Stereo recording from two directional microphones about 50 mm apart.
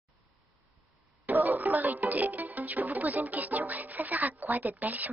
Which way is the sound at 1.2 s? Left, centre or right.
Right.